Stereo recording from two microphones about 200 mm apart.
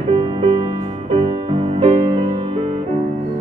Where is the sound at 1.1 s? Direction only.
25° right (ahead or behind).